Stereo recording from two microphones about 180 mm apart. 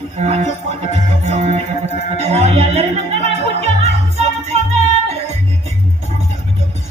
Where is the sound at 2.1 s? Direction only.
40° right (ahead or behind).